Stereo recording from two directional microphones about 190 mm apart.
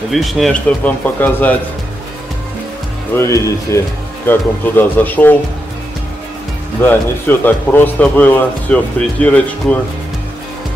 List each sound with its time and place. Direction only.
0.1 s a man's voice: centre (ahead or behind)
3.2 s a man's voice: 15° left (ahead or behind)
6.8 s a man's voice: 10° left (ahead or behind)